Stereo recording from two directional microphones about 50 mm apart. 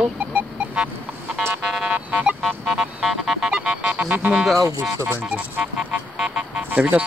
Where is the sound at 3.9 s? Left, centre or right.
Right.